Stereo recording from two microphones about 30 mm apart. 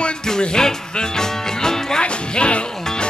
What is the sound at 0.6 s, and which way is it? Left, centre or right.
Music, left.